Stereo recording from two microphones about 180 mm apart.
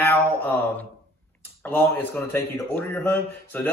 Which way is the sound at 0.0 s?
10° left (ahead or behind).